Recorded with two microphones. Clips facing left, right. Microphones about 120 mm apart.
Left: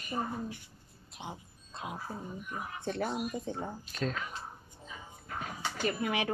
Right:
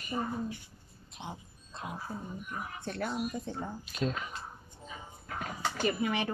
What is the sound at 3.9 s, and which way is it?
Speech, 15° right (ahead or behind).